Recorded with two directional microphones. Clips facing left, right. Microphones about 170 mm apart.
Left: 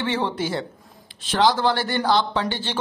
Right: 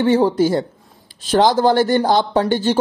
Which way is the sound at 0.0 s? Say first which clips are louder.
Right 10 dB; 40° right (ahead or behind).